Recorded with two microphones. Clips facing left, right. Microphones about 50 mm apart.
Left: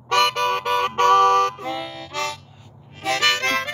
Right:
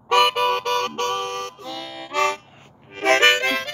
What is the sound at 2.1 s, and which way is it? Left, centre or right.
Harmonica, right.